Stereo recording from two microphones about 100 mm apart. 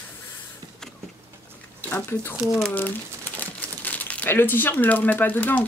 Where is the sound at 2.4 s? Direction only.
5° right (ahead or behind).